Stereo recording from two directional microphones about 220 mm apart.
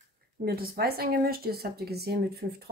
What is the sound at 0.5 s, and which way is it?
Speech, 45° right (ahead or behind).